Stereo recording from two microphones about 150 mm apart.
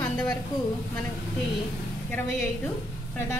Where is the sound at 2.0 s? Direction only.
10° left (ahead or behind).